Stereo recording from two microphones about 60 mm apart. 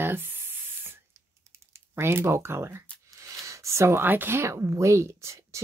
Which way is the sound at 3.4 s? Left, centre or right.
Right.